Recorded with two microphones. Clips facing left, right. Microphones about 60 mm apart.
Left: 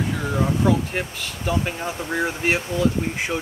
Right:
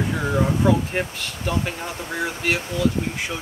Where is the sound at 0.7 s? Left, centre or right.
Centre.